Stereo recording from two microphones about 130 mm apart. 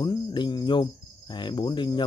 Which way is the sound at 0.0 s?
35° left (ahead or behind).